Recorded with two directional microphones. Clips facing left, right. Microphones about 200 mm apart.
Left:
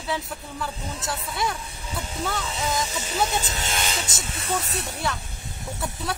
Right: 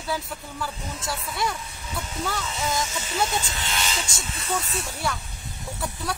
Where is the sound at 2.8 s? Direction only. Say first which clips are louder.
Left 1 dB; 35° left (ahead or behind).